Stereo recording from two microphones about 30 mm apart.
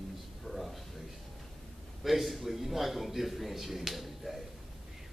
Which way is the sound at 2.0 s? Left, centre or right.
Centre.